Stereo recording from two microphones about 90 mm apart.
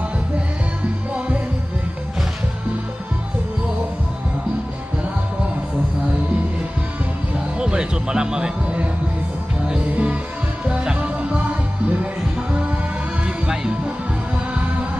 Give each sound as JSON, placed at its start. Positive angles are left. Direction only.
{"t": 7.3, "sound": "music", "side_deg": -10}
{"t": 9.8, "sound": "music", "side_deg": -15}
{"t": 13.5, "sound": "music", "side_deg": -10}